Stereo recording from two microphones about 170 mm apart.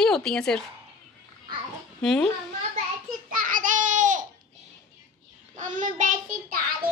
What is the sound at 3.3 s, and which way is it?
Child singing, 55° right (ahead or behind).